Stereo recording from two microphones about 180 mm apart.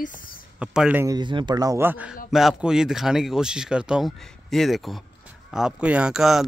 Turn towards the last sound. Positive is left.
turn(degrees=0)  # may be behind; listen again after turning